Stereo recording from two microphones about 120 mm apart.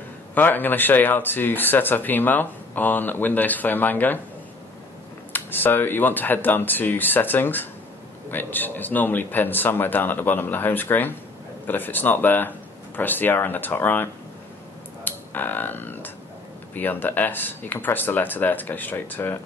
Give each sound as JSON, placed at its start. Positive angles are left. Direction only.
{"t": 0.3, "sound": "speech", "side_deg": 15}
{"t": 5.3, "sound": "speech", "side_deg": 15}
{"t": 15.0, "sound": "speech", "side_deg": 15}